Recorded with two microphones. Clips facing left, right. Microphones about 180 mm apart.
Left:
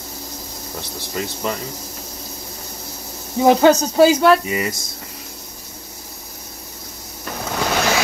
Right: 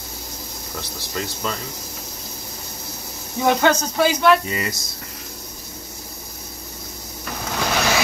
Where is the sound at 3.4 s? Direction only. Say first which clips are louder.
Left 5 dB; 35° left (ahead or behind).